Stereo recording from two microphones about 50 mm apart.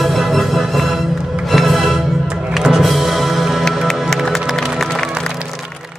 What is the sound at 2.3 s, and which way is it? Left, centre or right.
Music, right.